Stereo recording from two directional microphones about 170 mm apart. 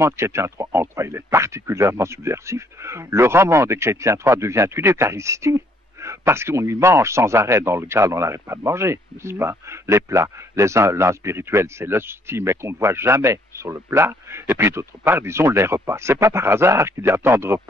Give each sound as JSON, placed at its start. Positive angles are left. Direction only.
{"t": 0.0, "sound": "speech", "side_deg": -15}